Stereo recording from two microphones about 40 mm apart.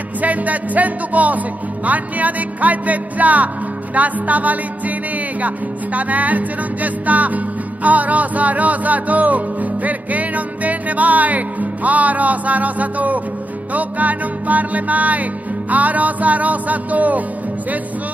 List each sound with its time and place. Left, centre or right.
0.2 s music: right
5.9 s music: right